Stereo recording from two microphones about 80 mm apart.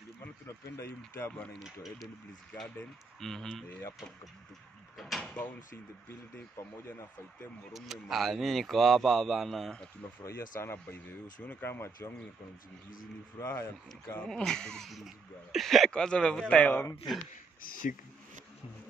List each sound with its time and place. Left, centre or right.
0.5 s speech: left
1.5 s a man's voice: centre
4.9 s speech: centre
5.2 s speech: centre
6.3 s speech: left
7.7 s a man's voice: centre
10.2 s speech: left
13.4 s speech: left
14.3 s a man's voice: centre